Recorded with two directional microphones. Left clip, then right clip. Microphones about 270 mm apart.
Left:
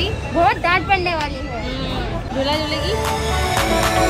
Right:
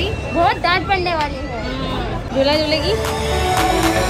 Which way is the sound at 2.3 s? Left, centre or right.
Centre.